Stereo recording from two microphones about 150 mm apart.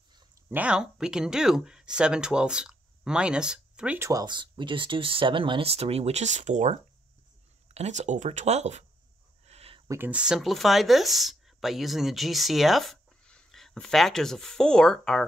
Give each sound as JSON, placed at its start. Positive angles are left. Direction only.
{"t": 0.5, "sound": "speech", "side_deg": -10}
{"t": 4.1, "sound": "speech", "side_deg": -25}
{"t": 9.5, "sound": "a sound", "side_deg": -40}
{"t": 9.8, "sound": "speech", "side_deg": -15}